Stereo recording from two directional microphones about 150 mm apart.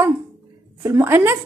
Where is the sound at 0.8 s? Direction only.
15° right (ahead or behind).